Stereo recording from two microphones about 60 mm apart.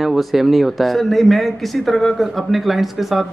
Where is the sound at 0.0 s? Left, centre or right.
Centre.